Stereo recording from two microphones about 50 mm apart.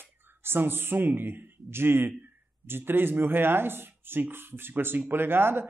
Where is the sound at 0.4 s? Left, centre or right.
Right.